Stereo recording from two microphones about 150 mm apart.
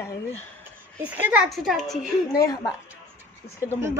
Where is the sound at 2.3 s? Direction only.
25° left (ahead or behind).